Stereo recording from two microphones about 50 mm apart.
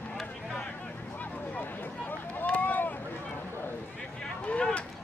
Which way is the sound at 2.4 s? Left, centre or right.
Left.